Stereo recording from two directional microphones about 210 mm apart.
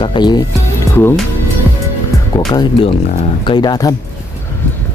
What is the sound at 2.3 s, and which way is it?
Speech, 20° left (ahead or behind).